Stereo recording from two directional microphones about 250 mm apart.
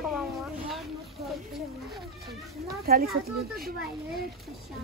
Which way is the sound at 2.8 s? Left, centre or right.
Right.